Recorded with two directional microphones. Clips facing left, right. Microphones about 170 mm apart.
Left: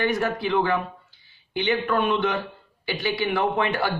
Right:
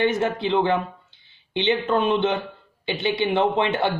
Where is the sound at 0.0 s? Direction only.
20° right (ahead or behind).